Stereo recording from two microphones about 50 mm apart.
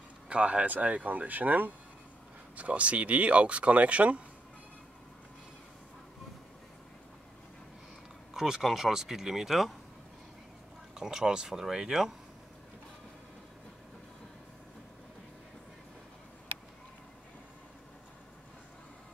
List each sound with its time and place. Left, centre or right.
0.3 s speech: right
8.3 s a sound: centre
8.6 s speech: centre
11.0 s speech: centre